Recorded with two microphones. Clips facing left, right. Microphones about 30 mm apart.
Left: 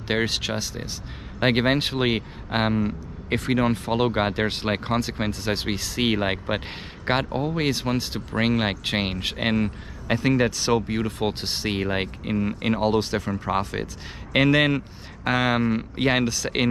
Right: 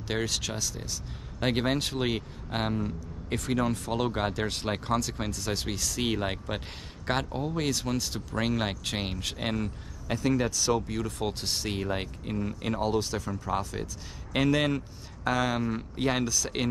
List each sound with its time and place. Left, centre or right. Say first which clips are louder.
0.1 s speech: left 7 dB; left